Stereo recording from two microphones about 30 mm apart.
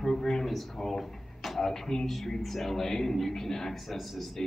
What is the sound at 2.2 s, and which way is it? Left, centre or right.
A man's voice, centre.